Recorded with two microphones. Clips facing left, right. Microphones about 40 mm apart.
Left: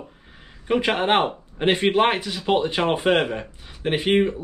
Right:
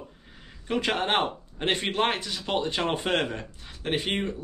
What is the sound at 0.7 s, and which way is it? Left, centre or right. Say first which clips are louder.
A man's voice: left 6 dB; centre.